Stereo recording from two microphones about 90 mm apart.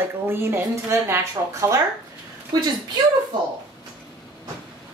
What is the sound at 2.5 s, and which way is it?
Speech, 50° right (ahead or behind).